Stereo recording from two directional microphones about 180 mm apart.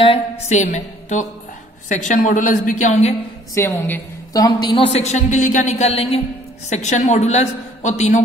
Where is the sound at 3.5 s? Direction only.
15° left (ahead or behind).